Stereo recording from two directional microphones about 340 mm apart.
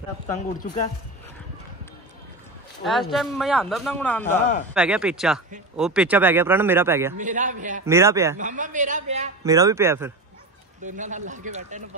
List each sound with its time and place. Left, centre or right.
0.6 s speech: left
2.8 s speech: centre
7.2 s speech: right
7.8 s speech: centre
8.4 s speech: right
9.4 s speech: centre
10.8 s speech: right